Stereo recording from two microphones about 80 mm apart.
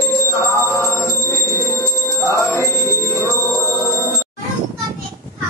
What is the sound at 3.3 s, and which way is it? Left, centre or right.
Music, left.